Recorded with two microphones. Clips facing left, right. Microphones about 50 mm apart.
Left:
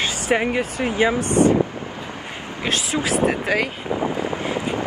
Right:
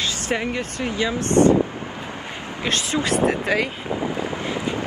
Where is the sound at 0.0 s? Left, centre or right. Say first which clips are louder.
Left 4 dB; left.